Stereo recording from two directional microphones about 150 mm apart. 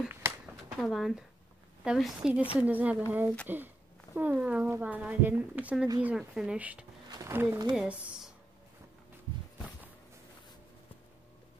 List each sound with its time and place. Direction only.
0.0 s a sound: 15° right (ahead or behind)
0.7 s speech: centre (ahead or behind)
7.1 s speech: 20° right (ahead or behind)
7.7 s speech: 5° right (ahead or behind)